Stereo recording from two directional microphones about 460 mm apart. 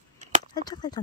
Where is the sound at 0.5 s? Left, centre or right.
Centre.